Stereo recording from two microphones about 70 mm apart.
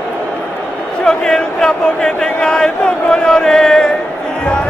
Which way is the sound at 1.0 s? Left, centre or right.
Centre.